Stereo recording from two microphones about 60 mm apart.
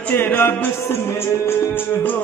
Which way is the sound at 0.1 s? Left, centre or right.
Left.